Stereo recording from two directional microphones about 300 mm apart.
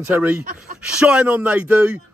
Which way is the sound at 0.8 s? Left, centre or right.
Centre.